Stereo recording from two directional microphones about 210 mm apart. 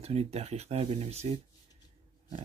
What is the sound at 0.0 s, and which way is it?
Speech, 30° right (ahead or behind).